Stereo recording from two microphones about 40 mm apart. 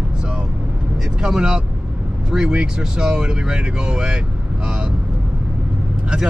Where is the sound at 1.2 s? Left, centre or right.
Centre.